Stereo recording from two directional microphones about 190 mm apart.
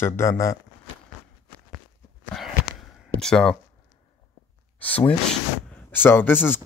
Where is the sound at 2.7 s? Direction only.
Centre (ahead or behind).